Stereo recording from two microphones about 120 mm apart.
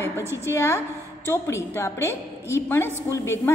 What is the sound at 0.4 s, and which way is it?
A woman's voice, 20° left (ahead or behind).